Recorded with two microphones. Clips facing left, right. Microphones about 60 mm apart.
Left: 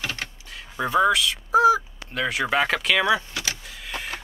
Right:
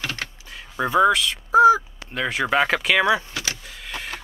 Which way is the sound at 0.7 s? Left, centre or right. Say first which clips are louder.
Right 2 dB; centre.